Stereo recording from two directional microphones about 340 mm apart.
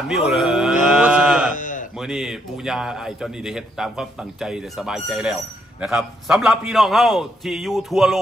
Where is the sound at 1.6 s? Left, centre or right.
Left.